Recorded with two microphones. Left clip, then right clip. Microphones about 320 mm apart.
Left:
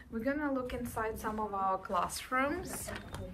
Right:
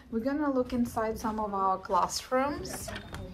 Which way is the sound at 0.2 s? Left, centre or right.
Centre.